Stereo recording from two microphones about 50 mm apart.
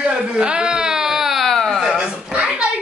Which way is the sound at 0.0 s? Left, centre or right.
Centre.